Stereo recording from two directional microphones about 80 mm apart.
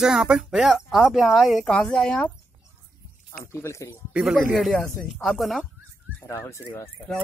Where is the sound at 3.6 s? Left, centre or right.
Left.